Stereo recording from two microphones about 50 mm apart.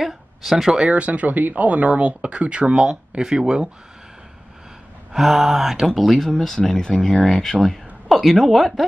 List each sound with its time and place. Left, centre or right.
0.0 s speech: centre
0.7 s speech: right
5.1 s speech: centre